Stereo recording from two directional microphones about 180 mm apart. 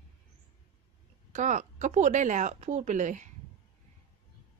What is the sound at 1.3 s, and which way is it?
A woman's voice, 40° right (ahead or behind).